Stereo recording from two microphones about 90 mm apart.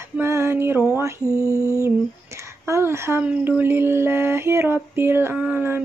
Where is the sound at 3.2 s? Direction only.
20° right (ahead or behind).